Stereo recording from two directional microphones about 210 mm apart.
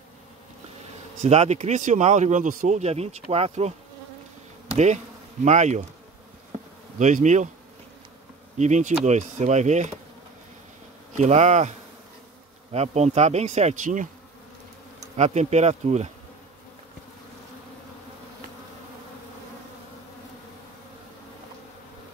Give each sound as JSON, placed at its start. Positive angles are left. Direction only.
{"t": 1.2, "sound": "speech", "side_deg": -30}
{"t": 4.7, "sound": "bee", "side_deg": -35}
{"t": 7.0, "sound": "speech", "side_deg": -35}
{"t": 8.5, "sound": "speech", "side_deg": -35}
{"t": 11.1, "sound": "speech", "side_deg": -35}
{"t": 12.7, "sound": "speech", "side_deg": -30}
{"t": 15.1, "sound": "speech", "side_deg": -30}